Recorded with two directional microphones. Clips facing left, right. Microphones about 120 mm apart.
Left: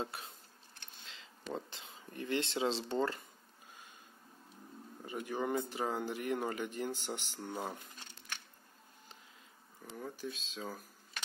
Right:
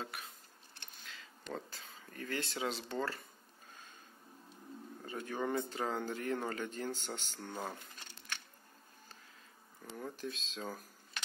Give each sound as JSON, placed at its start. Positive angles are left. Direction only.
{"t": 0.0, "sound": "speech", "side_deg": 25}
{"t": 1.0, "sound": "a sound", "side_deg": 25}
{"t": 1.5, "sound": "speech", "side_deg": 20}
{"t": 5.0, "sound": "speech", "side_deg": 15}
{"t": 9.8, "sound": "speech", "side_deg": 5}